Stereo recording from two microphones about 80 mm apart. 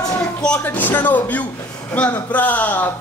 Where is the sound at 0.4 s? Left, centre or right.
Centre.